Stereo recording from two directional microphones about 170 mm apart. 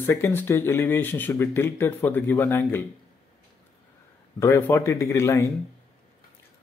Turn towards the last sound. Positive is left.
turn(degrees=15)  # may be behind; listen again after turning